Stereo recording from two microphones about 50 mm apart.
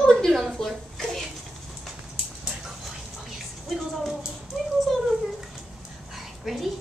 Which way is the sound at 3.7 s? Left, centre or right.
Centre.